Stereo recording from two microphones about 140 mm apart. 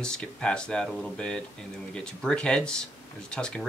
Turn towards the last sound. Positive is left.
turn(degrees=5)  # may be behind; listen again after turning